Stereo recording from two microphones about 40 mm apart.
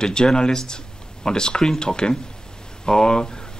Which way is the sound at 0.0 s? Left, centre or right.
Centre.